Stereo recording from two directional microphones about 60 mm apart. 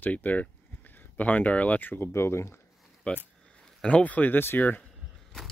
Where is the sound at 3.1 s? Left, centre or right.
Left.